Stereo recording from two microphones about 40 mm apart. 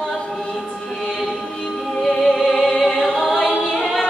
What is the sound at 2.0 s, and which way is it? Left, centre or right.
Music, centre.